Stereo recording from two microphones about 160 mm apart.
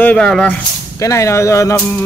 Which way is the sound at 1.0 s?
20° left (ahead or behind).